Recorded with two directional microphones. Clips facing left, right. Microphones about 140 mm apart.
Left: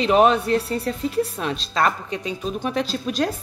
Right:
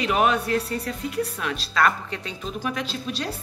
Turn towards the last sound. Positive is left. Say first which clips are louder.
# left 6 dB
turn(degrees=45)  # may be behind; listen again after turning